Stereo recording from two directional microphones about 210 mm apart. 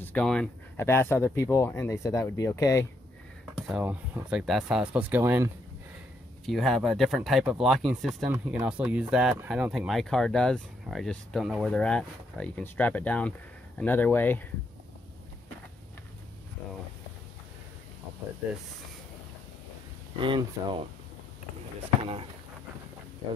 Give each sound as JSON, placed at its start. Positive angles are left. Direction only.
{"t": 0.0, "sound": "speech", "side_deg": 5}
{"t": 3.6, "sound": "speech", "side_deg": -5}
{"t": 6.4, "sound": "speech", "side_deg": 0}
{"t": 20.2, "sound": "speech", "side_deg": -25}
{"t": 22.0, "sound": "speech", "side_deg": -25}